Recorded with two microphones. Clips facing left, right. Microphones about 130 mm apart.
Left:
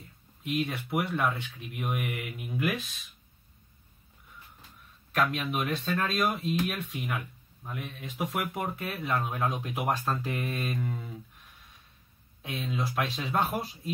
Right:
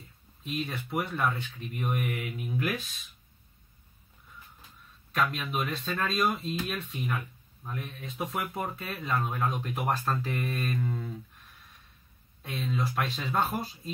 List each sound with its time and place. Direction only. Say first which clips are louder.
0.4 s speech: left 3 dB; centre (ahead or behind)
5.1 s speech: left 1 dB; centre (ahead or behind)
12.4 s speech: right 1 dB; 5° left (ahead or behind)